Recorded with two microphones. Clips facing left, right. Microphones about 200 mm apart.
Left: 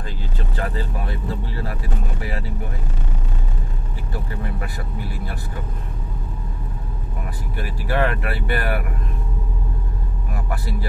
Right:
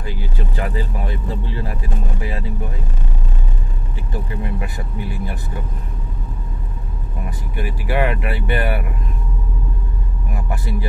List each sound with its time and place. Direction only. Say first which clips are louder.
0.0 s vehicle: right 3 dB; 15° right (ahead or behind)
7.2 s speech: right 4 dB; 15° right (ahead or behind)
10.5 s speech: right 2 dB; 20° right (ahead or behind)